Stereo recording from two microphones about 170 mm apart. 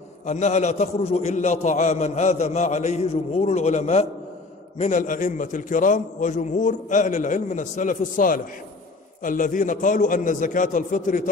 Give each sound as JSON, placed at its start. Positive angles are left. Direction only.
{"t": 0.3, "sound": "a man's voice", "side_deg": 45}